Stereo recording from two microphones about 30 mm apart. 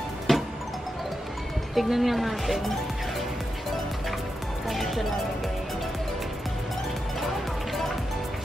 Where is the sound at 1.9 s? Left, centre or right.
Centre.